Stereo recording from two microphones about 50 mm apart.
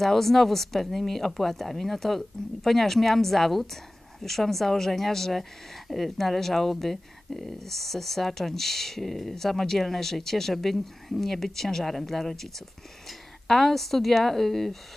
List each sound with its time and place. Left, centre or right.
0.0 s speech: centre